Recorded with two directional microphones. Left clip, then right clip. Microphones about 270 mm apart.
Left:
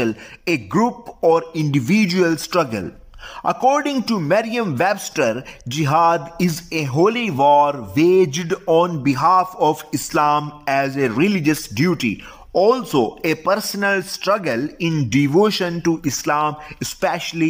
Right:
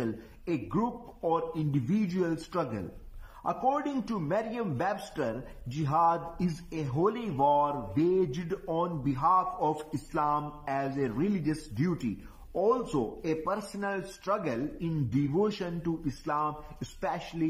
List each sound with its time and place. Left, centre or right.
0.0 s speech: left
3.4 s speech: left
3.8 s speech: left